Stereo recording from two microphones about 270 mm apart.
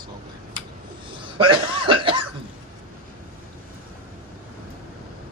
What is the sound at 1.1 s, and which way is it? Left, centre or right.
Cough, centre.